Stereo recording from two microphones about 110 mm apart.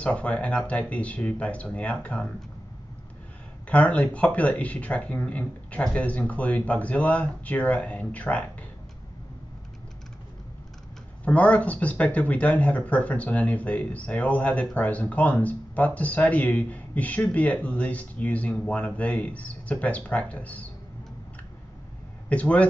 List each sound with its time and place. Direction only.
0.0 s speech: 10° left (ahead or behind)
3.6 s speech: 10° left (ahead or behind)
11.2 s speech: 10° left (ahead or behind)
22.3 s speech: 10° left (ahead or behind)